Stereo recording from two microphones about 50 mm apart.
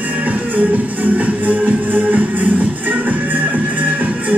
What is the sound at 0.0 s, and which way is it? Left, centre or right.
Music, right.